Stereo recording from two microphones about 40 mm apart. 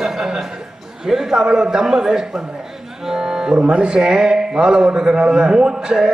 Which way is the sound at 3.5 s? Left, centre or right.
Right.